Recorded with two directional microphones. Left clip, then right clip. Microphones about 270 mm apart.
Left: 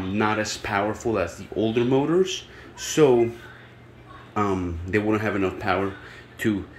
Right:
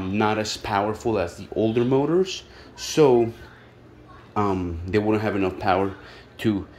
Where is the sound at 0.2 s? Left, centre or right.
Centre.